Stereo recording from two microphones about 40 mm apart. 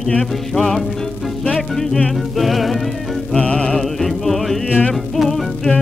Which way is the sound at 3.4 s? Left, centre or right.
Left.